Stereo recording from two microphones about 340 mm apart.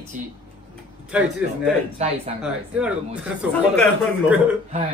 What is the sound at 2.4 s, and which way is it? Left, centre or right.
Speech, centre.